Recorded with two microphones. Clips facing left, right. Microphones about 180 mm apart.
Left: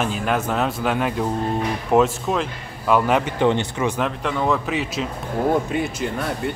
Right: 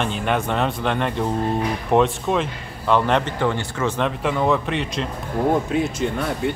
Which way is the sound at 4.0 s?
Centre (ahead or behind).